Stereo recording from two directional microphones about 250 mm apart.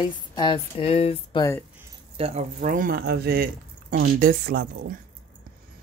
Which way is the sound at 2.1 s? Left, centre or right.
Right.